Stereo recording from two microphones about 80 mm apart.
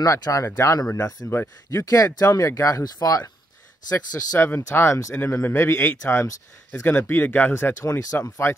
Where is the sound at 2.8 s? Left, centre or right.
Left.